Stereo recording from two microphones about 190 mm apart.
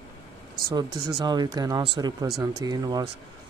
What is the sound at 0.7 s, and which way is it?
Speech, 20° right (ahead or behind).